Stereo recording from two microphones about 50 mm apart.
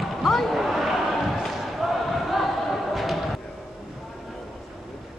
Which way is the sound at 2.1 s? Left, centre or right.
Centre.